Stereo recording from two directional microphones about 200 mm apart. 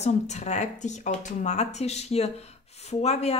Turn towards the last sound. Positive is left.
turn(degrees=30)  # may be behind; listen again after turning